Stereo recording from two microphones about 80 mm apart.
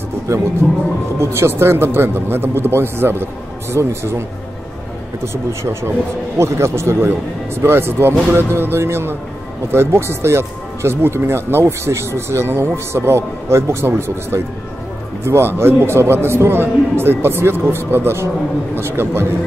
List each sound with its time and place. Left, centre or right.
0.3 s a man's voice: right
5.2 s a man's voice: right